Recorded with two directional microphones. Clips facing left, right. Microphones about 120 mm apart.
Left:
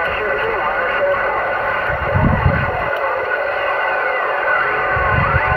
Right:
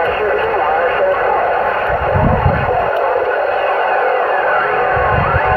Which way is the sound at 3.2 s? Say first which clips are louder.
Right 5 dB; 20° right (ahead or behind).